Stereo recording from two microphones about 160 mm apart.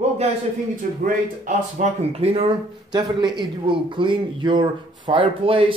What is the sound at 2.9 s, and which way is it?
A man's voice, 30° right (ahead or behind).